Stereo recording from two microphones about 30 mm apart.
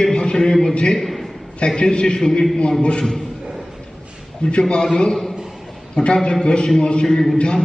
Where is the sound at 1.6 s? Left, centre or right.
Left.